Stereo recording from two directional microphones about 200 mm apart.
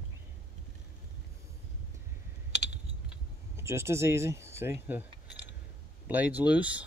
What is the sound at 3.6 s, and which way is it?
Speech, 15° right (ahead or behind).